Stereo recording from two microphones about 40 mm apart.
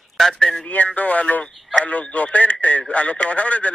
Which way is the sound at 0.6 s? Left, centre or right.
Left.